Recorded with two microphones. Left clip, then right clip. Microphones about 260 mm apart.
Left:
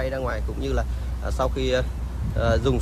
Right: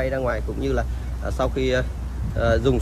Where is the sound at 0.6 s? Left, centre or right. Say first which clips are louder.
Right 3 dB; centre.